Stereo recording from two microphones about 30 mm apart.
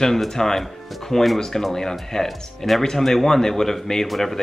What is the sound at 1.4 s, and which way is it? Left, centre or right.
Speech, centre.